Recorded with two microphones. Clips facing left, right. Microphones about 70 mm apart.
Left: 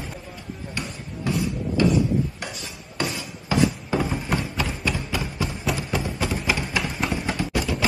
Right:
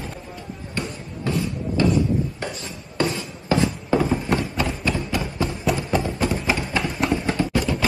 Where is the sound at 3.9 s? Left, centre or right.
Centre.